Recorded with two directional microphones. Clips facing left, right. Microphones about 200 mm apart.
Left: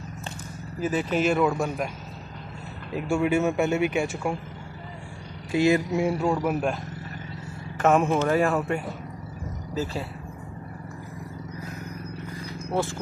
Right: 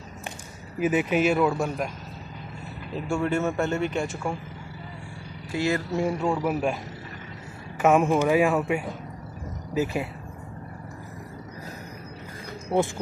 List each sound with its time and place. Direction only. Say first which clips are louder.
0.7 s speech: right 2 dB; 15° right (ahead or behind)
3.1 s speech: left 3 dB; 10° left (ahead or behind)
5.5 s speech: left 5 dB; 15° left (ahead or behind)
5.9 s speech: left 1 dB; 5° left (ahead or behind)
7.8 s speech: right 1 dB; 5° right (ahead or behind)